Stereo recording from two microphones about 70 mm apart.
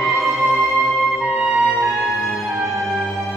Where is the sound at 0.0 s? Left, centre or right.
Centre.